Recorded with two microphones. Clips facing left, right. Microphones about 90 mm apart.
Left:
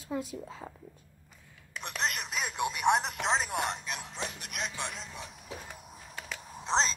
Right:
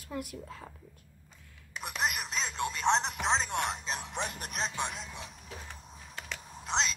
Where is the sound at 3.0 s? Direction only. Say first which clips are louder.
Even; centre (ahead or behind).